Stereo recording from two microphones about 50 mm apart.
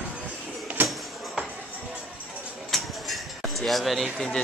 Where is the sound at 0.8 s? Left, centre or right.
Right.